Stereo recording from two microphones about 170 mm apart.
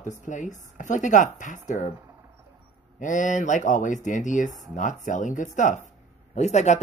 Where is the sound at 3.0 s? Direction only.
45° left (ahead or behind).